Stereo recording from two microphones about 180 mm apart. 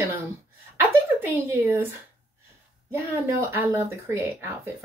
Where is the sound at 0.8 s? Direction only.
10° right (ahead or behind).